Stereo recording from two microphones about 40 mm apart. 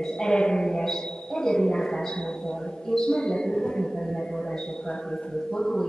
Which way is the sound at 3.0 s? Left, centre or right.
Left.